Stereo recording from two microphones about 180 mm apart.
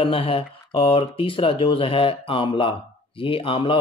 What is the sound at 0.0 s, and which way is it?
Speech, 30° left (ahead or behind).